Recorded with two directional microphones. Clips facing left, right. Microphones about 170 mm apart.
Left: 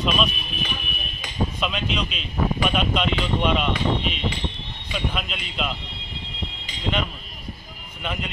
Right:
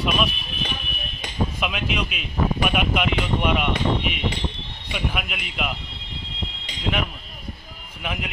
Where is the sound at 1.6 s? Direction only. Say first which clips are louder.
Even; 10° right (ahead or behind).